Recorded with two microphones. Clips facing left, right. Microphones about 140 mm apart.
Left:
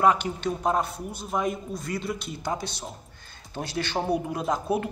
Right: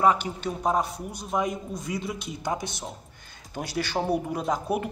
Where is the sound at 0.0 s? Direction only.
5° right (ahead or behind).